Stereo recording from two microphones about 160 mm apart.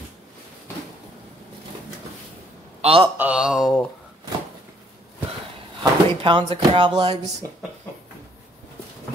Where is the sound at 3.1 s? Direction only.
10° right (ahead or behind).